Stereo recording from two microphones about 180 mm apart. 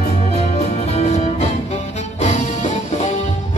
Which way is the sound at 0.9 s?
40° left (ahead or behind).